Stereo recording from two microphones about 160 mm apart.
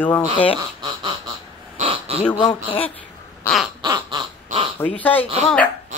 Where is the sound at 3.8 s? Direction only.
25° right (ahead or behind).